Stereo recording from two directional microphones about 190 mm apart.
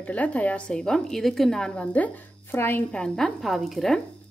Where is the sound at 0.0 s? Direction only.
5° left (ahead or behind).